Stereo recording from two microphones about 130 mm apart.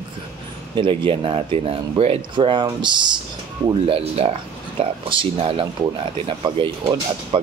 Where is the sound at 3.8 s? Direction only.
50° right (ahead or behind).